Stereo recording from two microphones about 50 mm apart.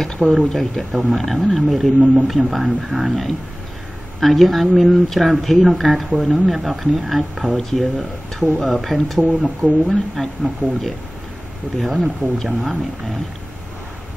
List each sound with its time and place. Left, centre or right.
0.5 s speech: centre